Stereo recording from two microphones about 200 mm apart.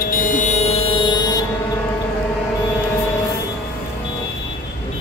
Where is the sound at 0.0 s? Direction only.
45° left (ahead or behind); by 1.4 s 20° left (ahead or behind).